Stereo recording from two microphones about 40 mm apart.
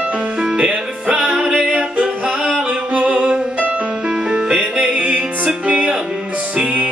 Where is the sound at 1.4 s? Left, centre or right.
Centre.